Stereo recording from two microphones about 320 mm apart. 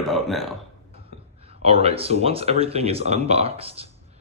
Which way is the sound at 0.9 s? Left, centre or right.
Centre.